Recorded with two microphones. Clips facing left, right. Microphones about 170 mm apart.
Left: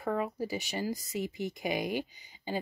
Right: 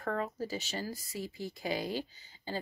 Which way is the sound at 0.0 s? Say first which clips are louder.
Left 3 dB; 10° left (ahead or behind).